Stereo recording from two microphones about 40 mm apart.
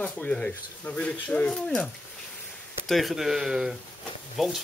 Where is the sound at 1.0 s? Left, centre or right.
Left.